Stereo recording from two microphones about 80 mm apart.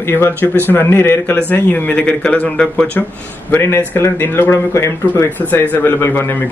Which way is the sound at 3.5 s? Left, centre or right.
Left.